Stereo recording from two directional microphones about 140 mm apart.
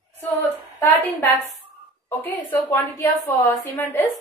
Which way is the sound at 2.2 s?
15° left (ahead or behind).